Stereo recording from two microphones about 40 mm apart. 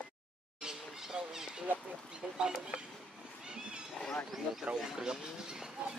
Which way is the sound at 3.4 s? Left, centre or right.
Right.